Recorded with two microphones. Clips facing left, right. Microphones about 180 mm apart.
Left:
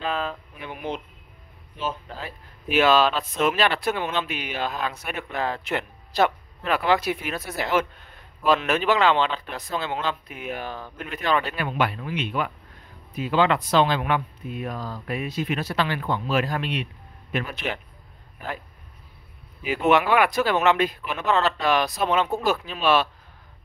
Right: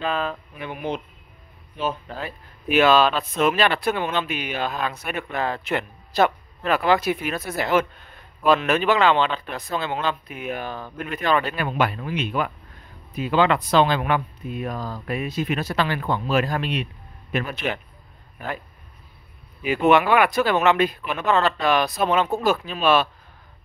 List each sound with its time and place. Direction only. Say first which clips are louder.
0.0 s speech: right 2 dB; 65° right (ahead or behind); by 12.4 s 40° right (ahead or behind)
13.1 s speech: right 2 dB; 55° right (ahead or behind)
19.6 s speech: right 3 dB; 60° right (ahead or behind)